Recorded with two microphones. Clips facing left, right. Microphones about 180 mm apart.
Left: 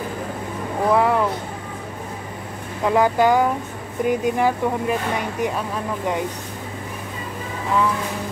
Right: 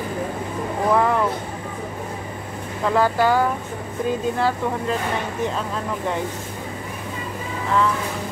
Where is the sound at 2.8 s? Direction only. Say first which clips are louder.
Left 2 dB; 15° left (ahead or behind).